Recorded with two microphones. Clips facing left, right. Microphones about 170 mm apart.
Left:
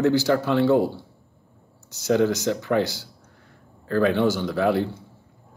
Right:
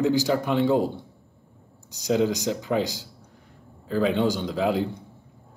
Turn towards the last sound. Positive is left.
turn(degrees=-15)  # may be behind; listen again after turning